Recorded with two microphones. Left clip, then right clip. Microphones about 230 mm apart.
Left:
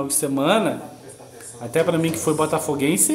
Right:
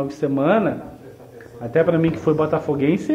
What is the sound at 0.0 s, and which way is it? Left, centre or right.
Speech, centre.